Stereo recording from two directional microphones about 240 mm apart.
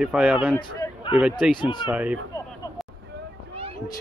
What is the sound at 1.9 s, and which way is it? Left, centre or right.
Speech, centre.